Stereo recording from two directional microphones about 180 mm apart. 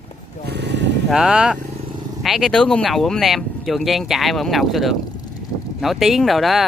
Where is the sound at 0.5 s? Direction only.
70° right (ahead or behind).